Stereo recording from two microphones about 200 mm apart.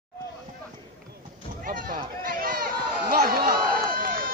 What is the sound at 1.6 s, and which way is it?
Run, 45° right (ahead or behind).